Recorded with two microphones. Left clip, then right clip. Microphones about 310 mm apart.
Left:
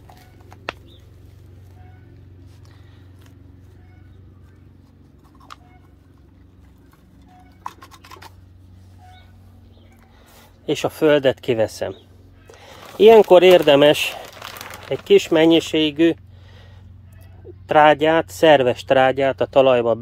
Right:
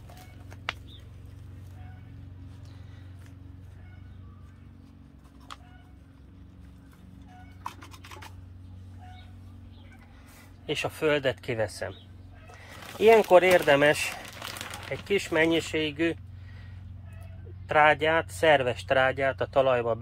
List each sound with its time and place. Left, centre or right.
7.6 s music: centre
10.7 s speech: left
14.4 s a sound: centre
14.9 s speech: left
17.6 s speech: left